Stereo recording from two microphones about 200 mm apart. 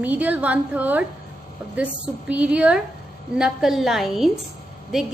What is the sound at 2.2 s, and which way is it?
A woman's voice, 5° right (ahead or behind).